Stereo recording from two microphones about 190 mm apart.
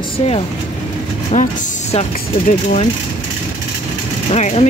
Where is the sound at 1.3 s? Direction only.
35° left (ahead or behind).